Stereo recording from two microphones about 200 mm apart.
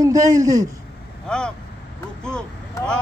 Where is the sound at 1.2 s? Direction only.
5° left (ahead or behind).